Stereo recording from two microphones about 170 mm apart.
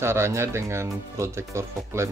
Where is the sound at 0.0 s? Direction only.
15° right (ahead or behind).